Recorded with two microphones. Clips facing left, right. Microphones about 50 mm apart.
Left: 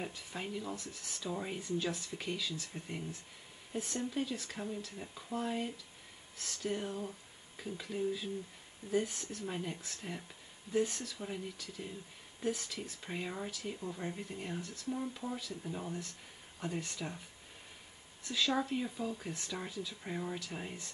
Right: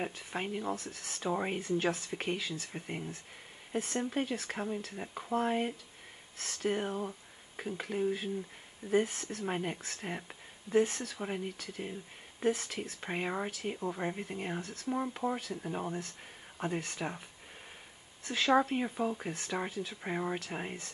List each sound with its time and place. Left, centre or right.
0.0 s speech: right
18.2 s speech: right